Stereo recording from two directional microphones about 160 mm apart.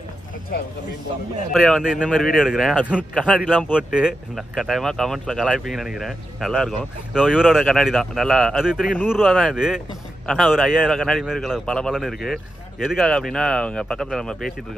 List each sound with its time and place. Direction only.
0.5 s speech: 75° left (ahead or behind)
1.5 s speech: centre (ahead or behind)